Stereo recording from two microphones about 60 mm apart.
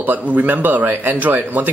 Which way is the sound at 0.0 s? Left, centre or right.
Right.